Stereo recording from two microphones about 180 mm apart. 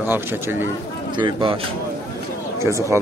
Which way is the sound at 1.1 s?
25° right (ahead or behind).